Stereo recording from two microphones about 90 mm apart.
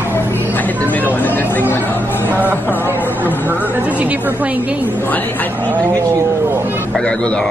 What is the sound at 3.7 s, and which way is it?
Speech, 15° right (ahead or behind).